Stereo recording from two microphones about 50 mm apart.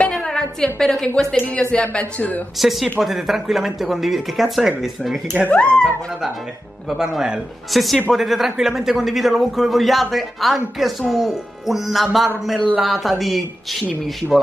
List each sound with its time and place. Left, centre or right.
0.1 s a sound: centre
0.7 s a woman's voice: centre; by 2.4 s left
2.5 s a man's voice: centre
5.5 s speech: left
6.9 s a man's voice: centre